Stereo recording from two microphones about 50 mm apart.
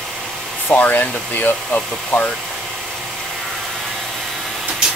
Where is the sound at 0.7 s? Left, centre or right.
Left.